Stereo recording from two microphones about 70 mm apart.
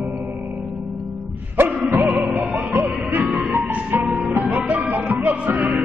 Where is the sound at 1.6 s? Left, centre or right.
Right; by 3.8 s centre.